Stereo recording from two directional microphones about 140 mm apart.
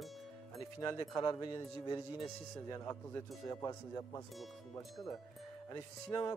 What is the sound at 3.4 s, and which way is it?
Speech, 25° left (ahead or behind).